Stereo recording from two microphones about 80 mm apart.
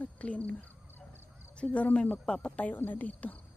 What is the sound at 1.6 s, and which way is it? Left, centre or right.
Speech, centre.